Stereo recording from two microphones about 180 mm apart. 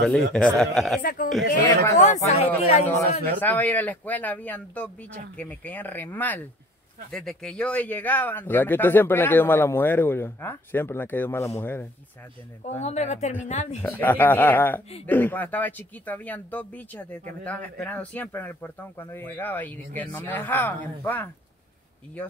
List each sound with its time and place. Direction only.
0.0 s speech: 5° left (ahead or behind)
1.0 s speech: 50° left (ahead or behind)
2.0 s speech: 40° left (ahead or behind)
3.3 s a man's voice: 10° left (ahead or behind)
12.6 s speech: 40° left (ahead or behind)
13.8 s a man's voice: 10° left (ahead or behind)